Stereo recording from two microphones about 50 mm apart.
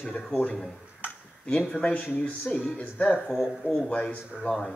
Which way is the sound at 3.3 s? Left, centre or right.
Centre.